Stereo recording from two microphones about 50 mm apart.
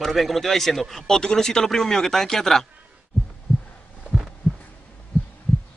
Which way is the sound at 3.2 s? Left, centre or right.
Left.